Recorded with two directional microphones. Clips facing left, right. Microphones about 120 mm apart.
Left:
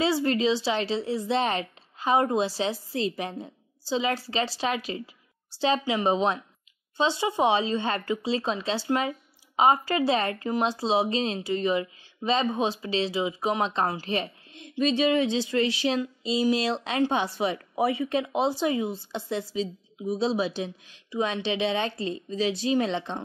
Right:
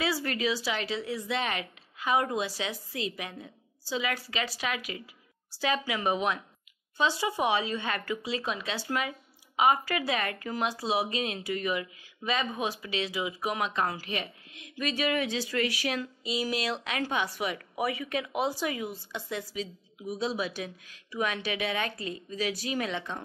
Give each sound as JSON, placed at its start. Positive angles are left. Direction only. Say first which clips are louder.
{"t": 0.0, "sound": "speech", "louder": "left 6 dB", "side_deg": 25}